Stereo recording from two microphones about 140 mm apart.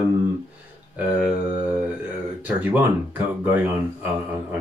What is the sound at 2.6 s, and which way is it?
Speech, 15° right (ahead or behind).